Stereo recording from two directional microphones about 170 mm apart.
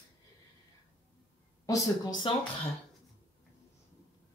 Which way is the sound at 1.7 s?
25° left (ahead or behind).